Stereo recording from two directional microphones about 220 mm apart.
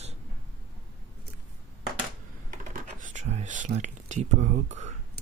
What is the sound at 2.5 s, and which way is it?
Computer keyboard, 35° right (ahead or behind).